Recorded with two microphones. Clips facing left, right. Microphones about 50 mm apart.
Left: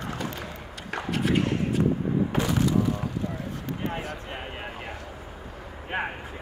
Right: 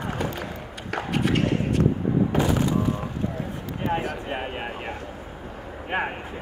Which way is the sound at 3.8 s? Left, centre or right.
Right.